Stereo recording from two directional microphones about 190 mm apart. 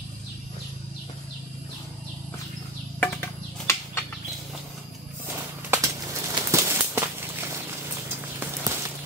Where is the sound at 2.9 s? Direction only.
15° left (ahead or behind).